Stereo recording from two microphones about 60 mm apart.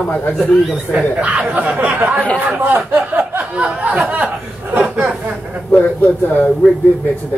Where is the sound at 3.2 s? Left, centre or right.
Right.